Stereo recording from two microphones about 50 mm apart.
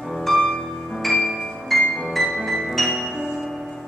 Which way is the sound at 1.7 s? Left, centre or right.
Centre.